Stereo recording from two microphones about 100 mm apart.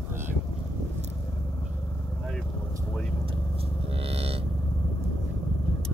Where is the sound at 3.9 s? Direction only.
75° right (ahead or behind).